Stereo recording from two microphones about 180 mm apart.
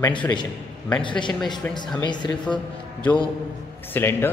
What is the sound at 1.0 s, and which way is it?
Speech, 25° left (ahead or behind).